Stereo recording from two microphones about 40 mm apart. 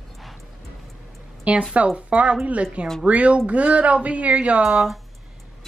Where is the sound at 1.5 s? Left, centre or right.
Right.